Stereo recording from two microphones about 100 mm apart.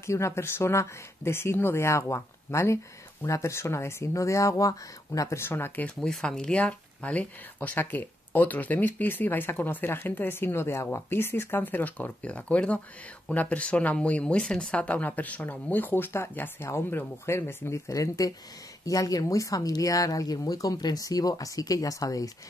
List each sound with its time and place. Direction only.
0.0 s speech: 30° left (ahead or behind)
5.9 s speech: 5° left (ahead or behind); by 22.3 s 35° left (ahead or behind)